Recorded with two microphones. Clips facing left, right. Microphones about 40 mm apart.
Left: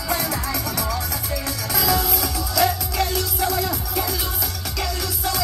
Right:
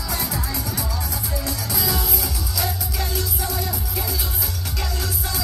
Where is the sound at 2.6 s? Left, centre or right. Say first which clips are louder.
Left 8 dB; left.